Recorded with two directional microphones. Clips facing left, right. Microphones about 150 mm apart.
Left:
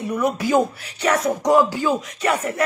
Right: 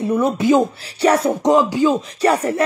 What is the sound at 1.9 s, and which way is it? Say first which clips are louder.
Speech: right 5 dB; 30° right (ahead or behind).